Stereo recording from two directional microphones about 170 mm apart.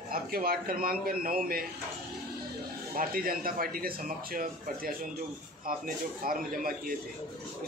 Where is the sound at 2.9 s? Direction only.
60° right (ahead or behind).